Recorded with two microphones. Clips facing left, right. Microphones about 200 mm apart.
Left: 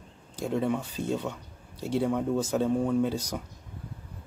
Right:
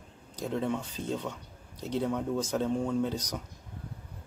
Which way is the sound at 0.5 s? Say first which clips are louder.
Left 3 dB; 5° left (ahead or behind).